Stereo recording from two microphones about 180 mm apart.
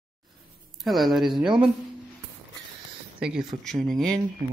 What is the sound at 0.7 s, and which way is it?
Speech, centre (ahead or behind).